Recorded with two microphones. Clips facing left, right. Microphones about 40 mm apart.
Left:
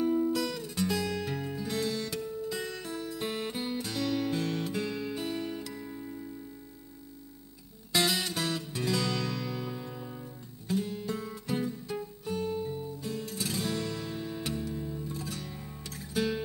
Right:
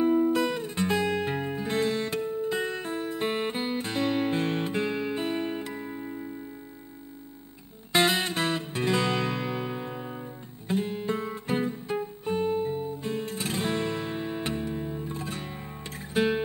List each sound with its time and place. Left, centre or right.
0.0 s music: right
7.9 s music: right
10.7 s guitar: right